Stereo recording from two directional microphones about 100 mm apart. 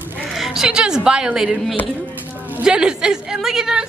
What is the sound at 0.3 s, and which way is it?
A woman's voice, 5° right (ahead or behind).